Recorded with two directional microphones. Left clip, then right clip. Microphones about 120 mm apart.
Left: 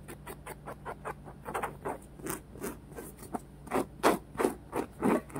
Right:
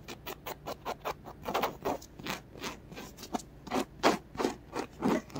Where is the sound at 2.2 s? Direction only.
15° right (ahead or behind).